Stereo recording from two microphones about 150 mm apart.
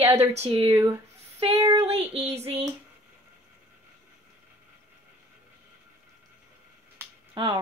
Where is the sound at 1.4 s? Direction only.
40° right (ahead or behind).